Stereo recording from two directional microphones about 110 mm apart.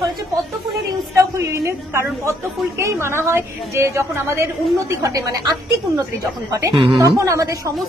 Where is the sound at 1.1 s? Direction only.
25° right (ahead or behind).